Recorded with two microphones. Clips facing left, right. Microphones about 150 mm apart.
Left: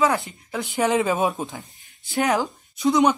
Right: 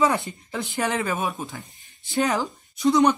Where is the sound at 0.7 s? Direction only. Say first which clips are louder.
Left 5 dB; 20° left (ahead or behind).